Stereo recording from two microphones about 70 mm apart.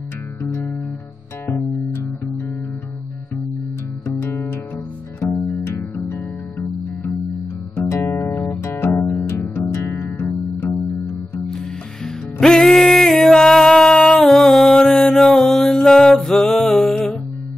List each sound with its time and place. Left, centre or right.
0.4 s music: left
4.2 s music: left
7.9 s music: left
12.4 s music: centre